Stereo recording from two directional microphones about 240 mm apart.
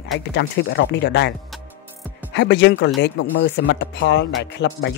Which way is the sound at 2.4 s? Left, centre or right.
Left.